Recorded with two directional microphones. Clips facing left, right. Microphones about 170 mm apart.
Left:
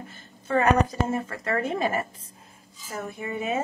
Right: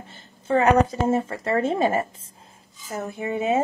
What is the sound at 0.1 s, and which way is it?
A woman's voice, 25° right (ahead or behind).